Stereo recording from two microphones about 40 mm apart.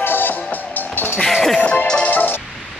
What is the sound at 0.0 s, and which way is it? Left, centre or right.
Music, left.